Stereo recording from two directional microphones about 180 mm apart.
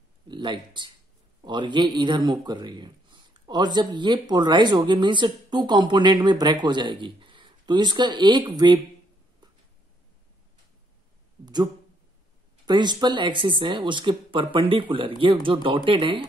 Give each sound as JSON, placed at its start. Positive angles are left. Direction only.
{"t": 0.3, "sound": "a man's voice", "side_deg": -25}
{"t": 11.4, "sound": "a man's voice", "side_deg": -20}